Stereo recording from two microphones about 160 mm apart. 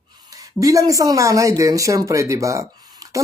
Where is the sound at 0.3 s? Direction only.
20° right (ahead or behind).